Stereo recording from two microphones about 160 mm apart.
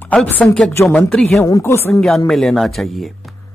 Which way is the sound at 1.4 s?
20° left (ahead or behind).